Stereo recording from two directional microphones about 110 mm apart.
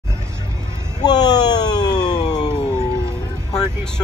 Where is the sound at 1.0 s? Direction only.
40° left (ahead or behind).